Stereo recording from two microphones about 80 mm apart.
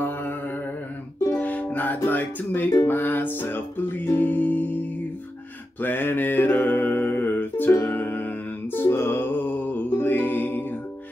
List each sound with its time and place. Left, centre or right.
0.0 s mantra: left
1.4 s music: centre
5.8 s mantra: left